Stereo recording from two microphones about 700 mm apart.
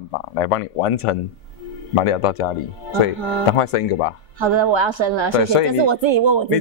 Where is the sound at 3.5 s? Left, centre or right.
Left.